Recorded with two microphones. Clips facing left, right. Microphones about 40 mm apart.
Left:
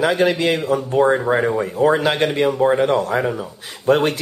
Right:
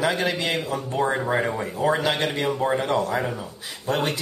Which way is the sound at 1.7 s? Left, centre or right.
Left.